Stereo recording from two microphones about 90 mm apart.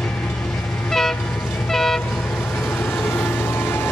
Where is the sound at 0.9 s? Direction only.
5° left (ahead or behind).